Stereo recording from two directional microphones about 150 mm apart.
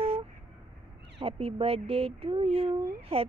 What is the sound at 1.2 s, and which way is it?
Speech, 40° right (ahead or behind).